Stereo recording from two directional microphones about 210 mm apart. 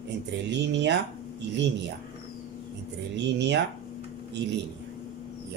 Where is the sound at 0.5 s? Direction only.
55° right (ahead or behind).